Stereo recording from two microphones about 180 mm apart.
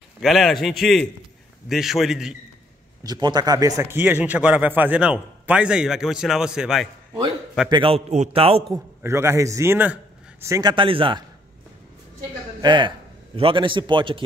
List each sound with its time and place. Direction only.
0.2 s a man's voice: centre (ahead or behind)
3.0 s a man's voice: 25° right (ahead or behind); by 6.9 s 5° right (ahead or behind)
7.7 s a man's voice: 30° right (ahead or behind)
9.0 s a man's voice: 15° right (ahead or behind)
12.6 s a man's voice: 25° right (ahead or behind)